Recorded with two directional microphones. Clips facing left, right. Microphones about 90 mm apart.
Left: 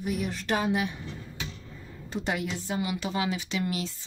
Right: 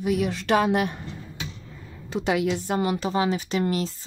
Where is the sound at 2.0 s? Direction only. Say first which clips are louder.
Right 7 dB; 90° right.